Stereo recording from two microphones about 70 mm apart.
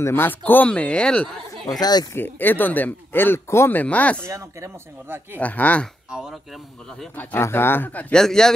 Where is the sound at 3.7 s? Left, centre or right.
Left.